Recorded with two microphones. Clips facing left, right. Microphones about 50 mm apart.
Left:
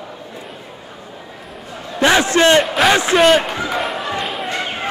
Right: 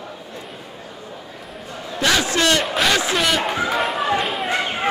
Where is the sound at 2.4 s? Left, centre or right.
Left.